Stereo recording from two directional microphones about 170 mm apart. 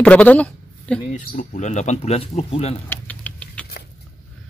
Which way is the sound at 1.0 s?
50° left (ahead or behind).